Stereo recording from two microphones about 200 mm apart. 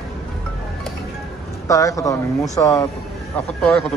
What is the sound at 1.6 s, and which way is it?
A man's voice, 15° left (ahead or behind).